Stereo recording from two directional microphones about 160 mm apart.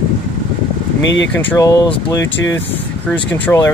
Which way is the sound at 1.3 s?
20° left (ahead or behind).